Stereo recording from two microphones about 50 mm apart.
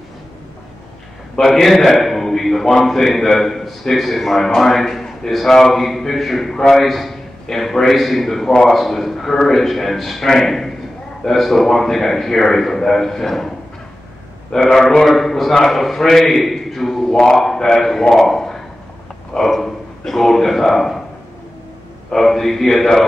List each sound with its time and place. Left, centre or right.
1.3 s a man's voice: centre
14.5 s a man's voice: centre
22.1 s a man's voice: centre